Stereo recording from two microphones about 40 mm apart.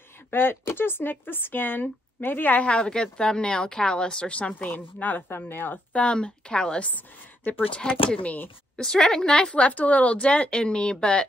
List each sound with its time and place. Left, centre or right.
0.3 s speech: left
2.5 s a woman's voice: left
4.6 s a woman's voice: left
5.9 s a woman's voice: left
6.8 s speech: left
7.7 s a woman's voice: left
8.7 s a woman's voice: centre
9.7 s a woman's voice: left